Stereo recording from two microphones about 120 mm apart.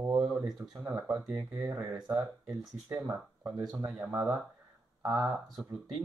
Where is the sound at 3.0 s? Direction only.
30° right (ahead or behind).